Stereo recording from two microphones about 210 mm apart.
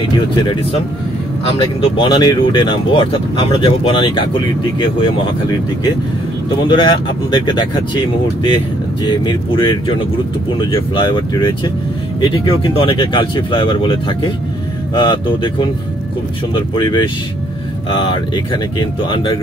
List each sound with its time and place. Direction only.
1.6 s speech: 25° left (ahead or behind)
6.7 s speech: 20° left (ahead or behind)
9.0 s speech: 20° left (ahead or behind)
16.5 s speech: 20° left (ahead or behind)